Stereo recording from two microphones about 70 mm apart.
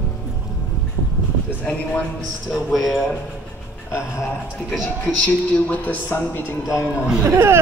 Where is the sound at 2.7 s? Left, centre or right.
Centre.